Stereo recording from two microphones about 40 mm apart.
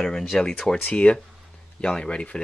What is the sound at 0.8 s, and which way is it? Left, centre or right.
Speech, left.